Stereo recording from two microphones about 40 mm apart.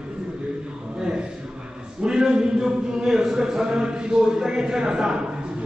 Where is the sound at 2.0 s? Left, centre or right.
Centre.